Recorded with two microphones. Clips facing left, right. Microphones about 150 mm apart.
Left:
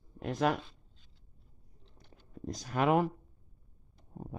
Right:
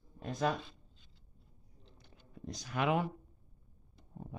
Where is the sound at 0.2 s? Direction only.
70° left (ahead or behind).